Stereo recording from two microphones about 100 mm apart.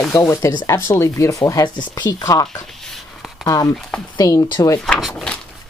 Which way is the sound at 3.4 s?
35° left (ahead or behind).